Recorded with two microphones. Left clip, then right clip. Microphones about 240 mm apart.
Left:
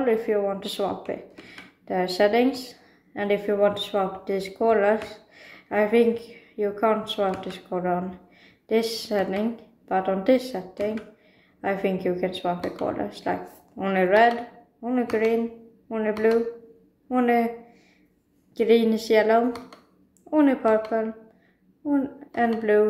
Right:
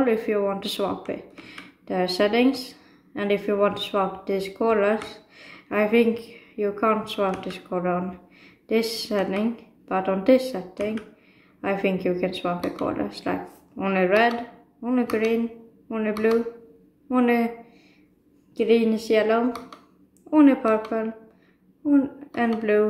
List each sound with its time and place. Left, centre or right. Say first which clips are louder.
0.0 s speech: even; centre
18.5 s a woman's voice: left 1 dB; centre